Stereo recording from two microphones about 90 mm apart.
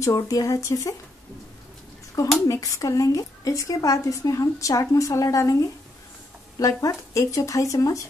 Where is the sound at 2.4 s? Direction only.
40° left (ahead or behind).